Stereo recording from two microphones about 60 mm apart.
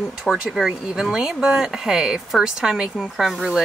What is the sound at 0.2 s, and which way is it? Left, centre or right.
Speech, centre.